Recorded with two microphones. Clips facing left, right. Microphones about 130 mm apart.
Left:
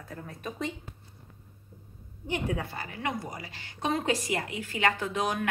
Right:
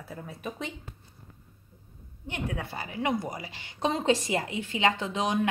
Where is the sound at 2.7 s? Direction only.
25° right (ahead or behind).